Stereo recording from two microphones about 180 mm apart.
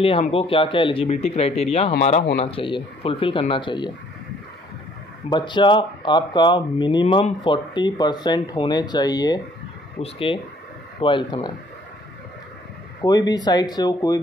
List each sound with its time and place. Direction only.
0.0 s speech: 30° left (ahead or behind)
5.3 s speech: 25° left (ahead or behind)
13.0 s speech: 20° left (ahead or behind)